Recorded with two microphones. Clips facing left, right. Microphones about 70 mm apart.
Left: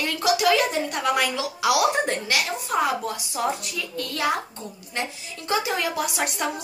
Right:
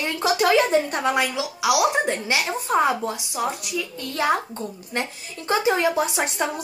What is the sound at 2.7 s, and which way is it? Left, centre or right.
Speech, right.